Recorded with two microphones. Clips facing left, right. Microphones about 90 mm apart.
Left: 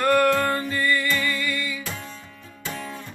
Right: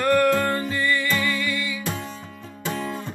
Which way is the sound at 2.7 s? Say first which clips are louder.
Right 5 dB; 50° right (ahead or behind).